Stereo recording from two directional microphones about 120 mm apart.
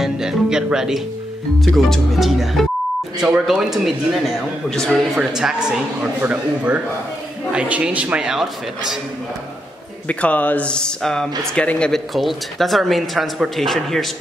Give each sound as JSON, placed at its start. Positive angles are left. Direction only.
{"t": 0.0, "sound": "a man's voice", "side_deg": -5}
{"t": 10.0, "sound": "speech", "side_deg": 10}